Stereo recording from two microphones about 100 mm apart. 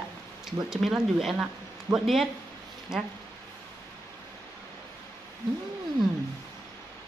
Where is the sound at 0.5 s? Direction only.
5° right (ahead or behind).